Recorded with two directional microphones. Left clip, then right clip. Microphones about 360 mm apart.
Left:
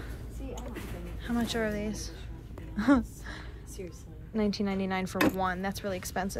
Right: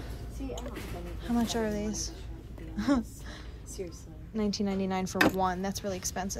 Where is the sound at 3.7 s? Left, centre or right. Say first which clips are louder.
Right 4 dB; right.